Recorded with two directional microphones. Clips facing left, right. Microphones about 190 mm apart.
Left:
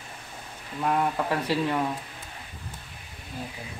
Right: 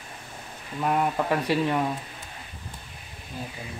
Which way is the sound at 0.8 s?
15° right (ahead or behind).